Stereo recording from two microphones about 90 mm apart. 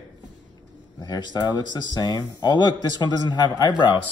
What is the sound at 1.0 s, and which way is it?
Speech, 50° left (ahead or behind).